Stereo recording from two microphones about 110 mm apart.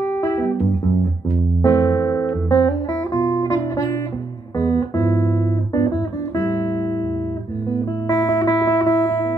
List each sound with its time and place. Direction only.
0.0 s music: 25° left (ahead or behind)
1.6 s music: 25° left (ahead or behind)
7.7 s music: 40° left (ahead or behind)
8.4 s music: 25° left (ahead or behind)